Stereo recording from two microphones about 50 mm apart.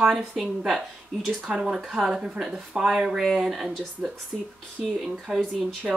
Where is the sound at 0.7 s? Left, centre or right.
Centre.